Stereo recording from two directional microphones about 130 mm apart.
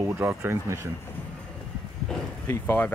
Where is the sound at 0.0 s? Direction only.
20° right (ahead or behind).